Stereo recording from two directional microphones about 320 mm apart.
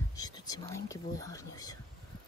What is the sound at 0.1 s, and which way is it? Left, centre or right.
Speech, centre.